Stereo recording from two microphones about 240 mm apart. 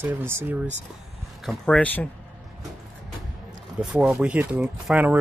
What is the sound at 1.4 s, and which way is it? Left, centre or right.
Speech, centre.